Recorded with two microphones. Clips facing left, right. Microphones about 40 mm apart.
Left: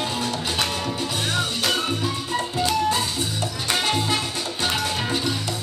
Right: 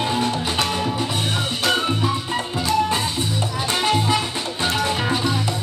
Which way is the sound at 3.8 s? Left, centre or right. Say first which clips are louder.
Right 4 dB; centre.